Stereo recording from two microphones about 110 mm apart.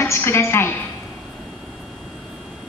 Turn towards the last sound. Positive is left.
turn(degrees=25)  # may be behind; listen again after turning